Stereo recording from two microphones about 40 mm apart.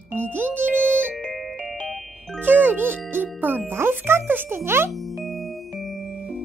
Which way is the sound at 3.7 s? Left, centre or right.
Right.